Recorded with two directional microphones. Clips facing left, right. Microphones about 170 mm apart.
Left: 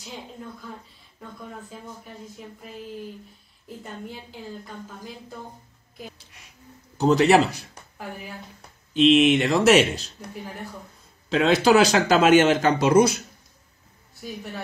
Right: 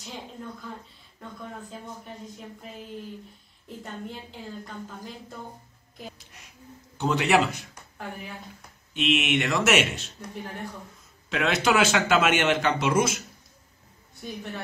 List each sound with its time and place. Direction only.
0.0 s a woman's voice: centre (ahead or behind)
3.6 s a woman's voice: 5° left (ahead or behind)
7.0 s speech: 35° left (ahead or behind)
8.9 s speech: 30° left (ahead or behind)
11.2 s speech: 30° left (ahead or behind)
14.2 s a woman's voice: 5° left (ahead or behind)